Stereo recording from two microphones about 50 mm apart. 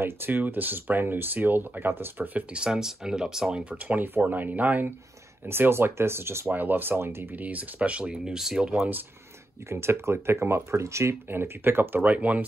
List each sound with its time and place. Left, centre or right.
0.0 s speech: right
2.5 s speech: centre
3.7 s speech: right
5.5 s speech: right
6.5 s speech: right
7.3 s speech: right; by 8.7 s centre
9.7 s speech: right
10.8 s speech: right
11.2 s speech: right
12.0 s speech: right